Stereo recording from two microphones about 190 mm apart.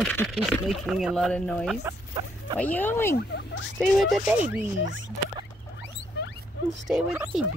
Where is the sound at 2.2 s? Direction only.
30° right (ahead or behind).